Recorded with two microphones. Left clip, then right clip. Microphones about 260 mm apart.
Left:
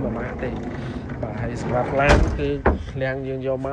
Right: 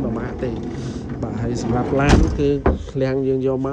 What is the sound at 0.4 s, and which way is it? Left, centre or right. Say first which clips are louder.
Speech: right 3 dB; centre.